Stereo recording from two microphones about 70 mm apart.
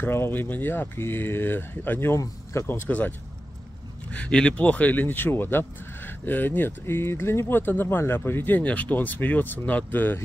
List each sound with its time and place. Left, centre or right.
0.0 s speech: left